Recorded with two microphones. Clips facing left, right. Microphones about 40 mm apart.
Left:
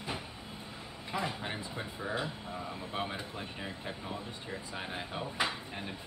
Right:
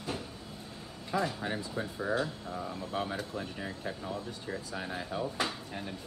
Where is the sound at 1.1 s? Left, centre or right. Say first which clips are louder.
Right 4 dB; left.